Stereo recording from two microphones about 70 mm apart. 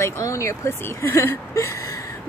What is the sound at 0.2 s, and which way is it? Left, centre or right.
Speech, left.